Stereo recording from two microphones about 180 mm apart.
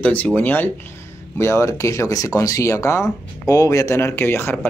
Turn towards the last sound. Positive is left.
turn(degrees=10)  # may be behind; listen again after turning